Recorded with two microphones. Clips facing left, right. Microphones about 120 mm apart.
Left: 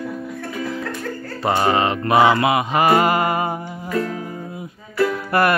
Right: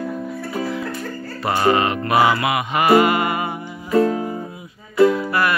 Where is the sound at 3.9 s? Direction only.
25° right (ahead or behind).